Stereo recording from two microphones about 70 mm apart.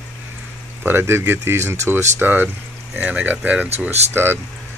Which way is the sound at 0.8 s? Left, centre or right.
Right.